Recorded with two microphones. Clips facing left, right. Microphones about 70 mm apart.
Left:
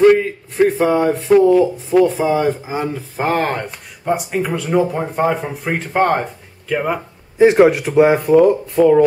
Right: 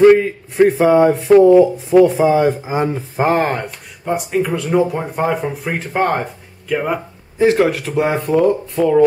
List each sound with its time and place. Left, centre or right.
0.6 s speech: centre
3.3 s speech: centre
7.3 s speech: centre
8.2 s speech: centre